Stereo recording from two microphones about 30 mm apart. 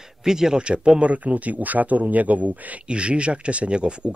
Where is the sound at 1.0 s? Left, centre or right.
Right.